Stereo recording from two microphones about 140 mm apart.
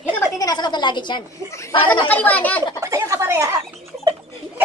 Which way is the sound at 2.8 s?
20° right (ahead or behind).